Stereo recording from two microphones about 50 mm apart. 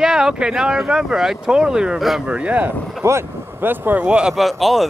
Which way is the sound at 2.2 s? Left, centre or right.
Right.